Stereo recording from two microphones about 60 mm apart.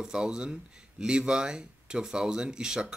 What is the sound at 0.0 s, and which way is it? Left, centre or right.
Speech, centre.